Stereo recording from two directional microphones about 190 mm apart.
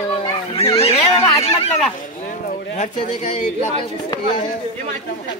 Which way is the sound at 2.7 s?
40° left (ahead or behind).